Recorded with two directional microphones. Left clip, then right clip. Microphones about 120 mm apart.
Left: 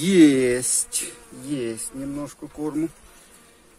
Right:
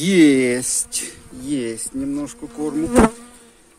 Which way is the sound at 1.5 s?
80° right.